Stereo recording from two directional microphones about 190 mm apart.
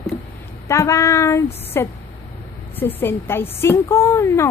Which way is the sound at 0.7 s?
15° left (ahead or behind).